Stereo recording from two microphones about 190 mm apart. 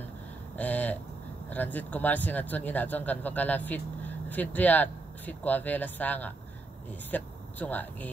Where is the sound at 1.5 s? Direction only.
10° left (ahead or behind).